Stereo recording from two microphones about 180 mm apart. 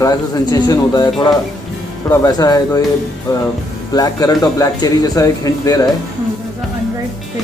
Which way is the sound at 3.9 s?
20° left (ahead or behind).